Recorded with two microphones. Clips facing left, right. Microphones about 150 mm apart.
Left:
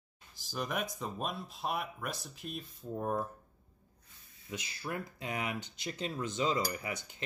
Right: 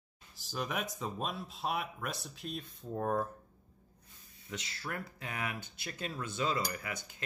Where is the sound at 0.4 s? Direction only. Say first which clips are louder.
Left 1 dB; centre (ahead or behind).